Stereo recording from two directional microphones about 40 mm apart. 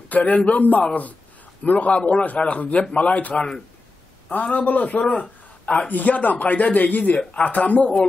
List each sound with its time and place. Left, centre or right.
0.1 s a man's voice: left
5.1 s a sound: left
5.9 s speech: left
7.2 s a man's voice: left
7.5 s speech: left